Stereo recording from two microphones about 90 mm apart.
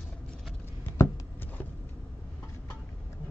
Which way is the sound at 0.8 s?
25° left (ahead or behind).